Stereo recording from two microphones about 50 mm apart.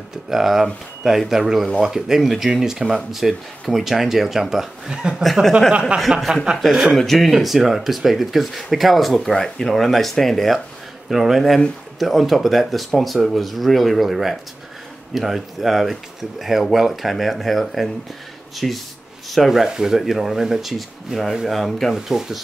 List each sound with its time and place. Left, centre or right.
0.3 s speech: centre
5.2 s speech: centre
5.7 s speech: right
5.9 s speech: centre
19.6 s speech: centre
21.9 s speech: centre